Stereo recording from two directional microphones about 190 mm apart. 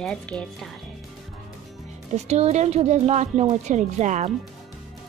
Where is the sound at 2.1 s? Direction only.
35° right (ahead or behind).